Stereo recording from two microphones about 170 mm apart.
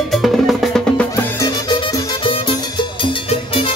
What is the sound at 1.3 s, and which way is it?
Music, 20° left (ahead or behind).